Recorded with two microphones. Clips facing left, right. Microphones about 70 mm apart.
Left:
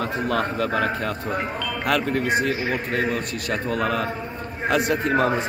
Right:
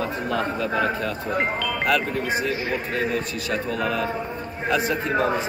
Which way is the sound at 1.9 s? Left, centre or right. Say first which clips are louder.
Left 2 dB; left.